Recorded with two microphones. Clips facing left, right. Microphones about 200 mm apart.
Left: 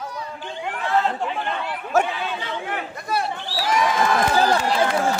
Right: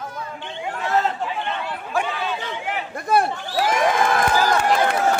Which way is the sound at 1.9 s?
45° left (ahead or behind).